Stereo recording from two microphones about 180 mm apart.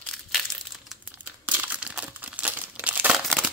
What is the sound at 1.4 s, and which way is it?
Crumpling, 10° right (ahead or behind).